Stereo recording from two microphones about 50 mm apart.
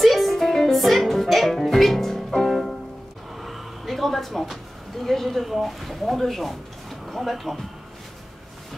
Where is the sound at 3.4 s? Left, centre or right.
Centre.